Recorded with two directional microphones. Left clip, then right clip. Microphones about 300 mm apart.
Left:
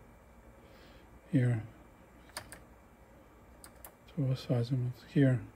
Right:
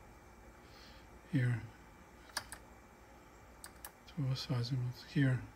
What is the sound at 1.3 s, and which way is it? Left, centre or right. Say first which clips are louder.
Speech: left 6 dB; centre.